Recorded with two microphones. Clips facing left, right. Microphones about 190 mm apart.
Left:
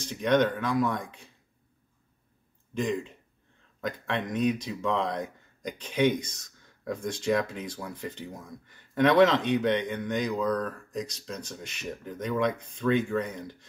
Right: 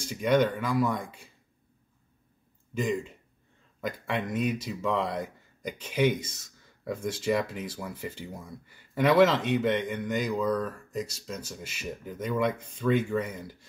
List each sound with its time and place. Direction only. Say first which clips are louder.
0.0 s speech: even; 10° right (ahead or behind)
2.7 s speech: even; 5° right (ahead or behind)